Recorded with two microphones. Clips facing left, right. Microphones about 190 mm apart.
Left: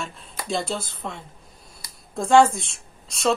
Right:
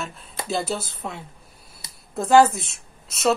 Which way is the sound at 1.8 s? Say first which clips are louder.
Even; 25° right (ahead or behind).